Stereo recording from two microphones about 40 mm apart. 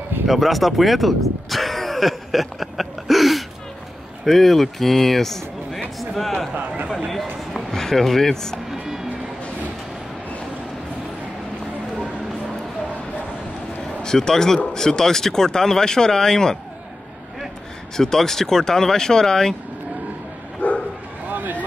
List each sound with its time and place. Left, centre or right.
0.3 s a sound: centre
4.2 s speech: centre
5.9 s a sound: centre
7.5 s speech: centre
8.6 s music: centre
14.0 s speech: centre
17.9 s speech: centre
20.6 s bow-wow: left
21.3 s vehicle: right